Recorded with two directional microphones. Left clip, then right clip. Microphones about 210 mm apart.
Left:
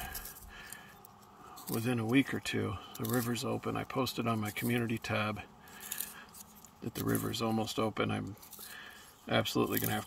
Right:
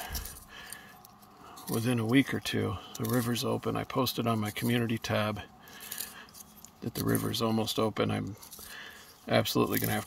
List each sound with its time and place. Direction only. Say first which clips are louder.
1.8 s speech: right 3 dB; 25° right (ahead or behind)
6.8 s speech: right 4 dB; 30° right (ahead or behind)
8.7 s a sound: right 4 dB; 30° right (ahead or behind)